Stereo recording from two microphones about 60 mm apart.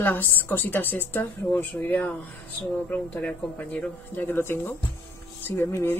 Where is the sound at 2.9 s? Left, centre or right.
Centre.